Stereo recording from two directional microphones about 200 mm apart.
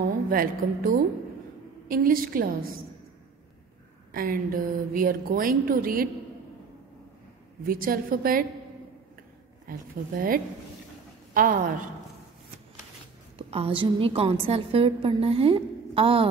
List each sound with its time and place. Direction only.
0.0 s a woman's voice: 45° right (ahead or behind)
4.1 s speech: 45° right (ahead or behind)
7.6 s speech: 45° right (ahead or behind)
9.7 s speech: 45° right (ahead or behind)
13.4 s a woman's voice: 30° right (ahead or behind)